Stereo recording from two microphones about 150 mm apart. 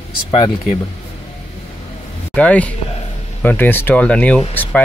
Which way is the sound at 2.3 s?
10° left (ahead or behind).